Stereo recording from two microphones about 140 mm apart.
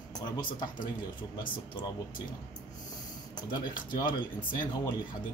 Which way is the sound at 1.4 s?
35° left (ahead or behind).